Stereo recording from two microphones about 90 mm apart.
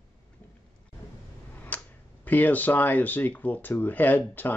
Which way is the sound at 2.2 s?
20° left (ahead or behind).